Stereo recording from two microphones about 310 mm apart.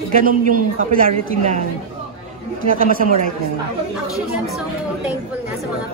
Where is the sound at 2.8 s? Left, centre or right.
Right.